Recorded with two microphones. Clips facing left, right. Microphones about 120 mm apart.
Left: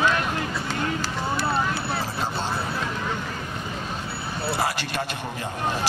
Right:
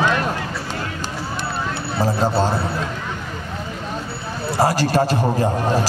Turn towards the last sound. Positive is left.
turn(degrees=-40)  # may be behind; listen again after turning